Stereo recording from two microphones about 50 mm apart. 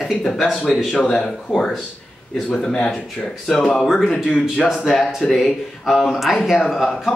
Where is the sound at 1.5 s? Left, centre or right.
Centre.